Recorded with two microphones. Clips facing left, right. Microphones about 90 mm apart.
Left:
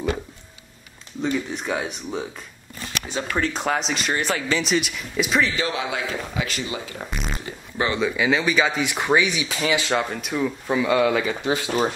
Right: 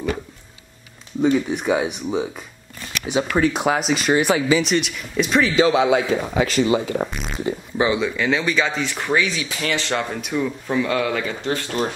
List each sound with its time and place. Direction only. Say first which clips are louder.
1.2 s speech: right 7 dB; 10° right (ahead or behind)
5.6 s a man's voice: right 10 dB; 20° right (ahead or behind)
6.3 s speech: right 8 dB; 35° right (ahead or behind)
7.1 s a sound: right 2 dB; centre (ahead or behind)
7.7 s speech: right 4 dB; 15° right (ahead or behind)
8.0 s speech: even; centre (ahead or behind)